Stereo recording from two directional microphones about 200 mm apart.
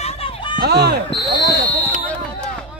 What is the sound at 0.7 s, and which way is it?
Speech, 55° right (ahead or behind).